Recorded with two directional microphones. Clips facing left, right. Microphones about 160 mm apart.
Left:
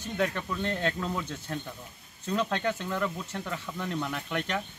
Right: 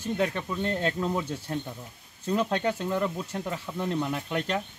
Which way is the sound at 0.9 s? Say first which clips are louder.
Right 4 dB; 20° right (ahead or behind).